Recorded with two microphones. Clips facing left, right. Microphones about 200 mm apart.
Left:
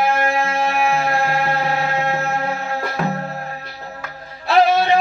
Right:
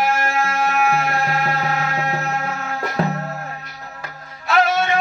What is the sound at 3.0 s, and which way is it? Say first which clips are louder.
Music: right 2 dB; 30° right (ahead or behind).